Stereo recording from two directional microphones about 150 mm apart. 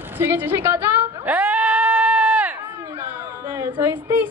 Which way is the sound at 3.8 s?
15° right (ahead or behind).